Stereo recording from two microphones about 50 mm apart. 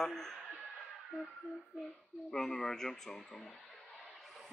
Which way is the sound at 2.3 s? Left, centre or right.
Centre.